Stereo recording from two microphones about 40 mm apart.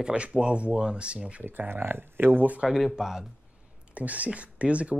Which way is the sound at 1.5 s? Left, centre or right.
Right.